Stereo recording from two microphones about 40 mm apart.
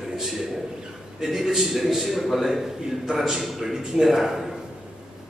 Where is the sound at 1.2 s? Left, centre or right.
Centre.